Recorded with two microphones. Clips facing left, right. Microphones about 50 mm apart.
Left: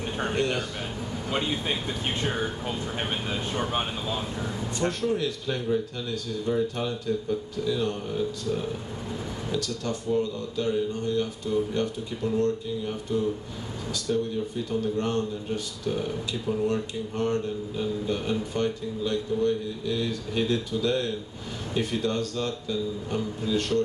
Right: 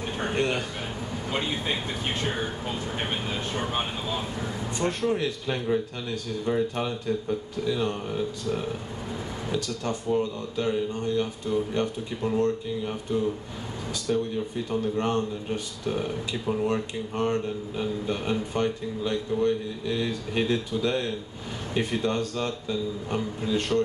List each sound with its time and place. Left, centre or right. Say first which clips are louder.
0.3 s speech: right 1 dB; right
3.0 s speech: even; centre
4.7 s speech: right 1 dB; right